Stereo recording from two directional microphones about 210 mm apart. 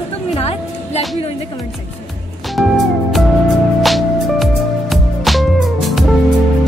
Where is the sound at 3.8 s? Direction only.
Centre (ahead or behind).